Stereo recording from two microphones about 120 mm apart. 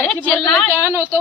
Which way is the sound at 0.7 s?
20° right (ahead or behind).